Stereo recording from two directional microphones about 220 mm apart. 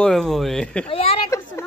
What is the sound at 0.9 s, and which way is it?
Speech, 25° left (ahead or behind).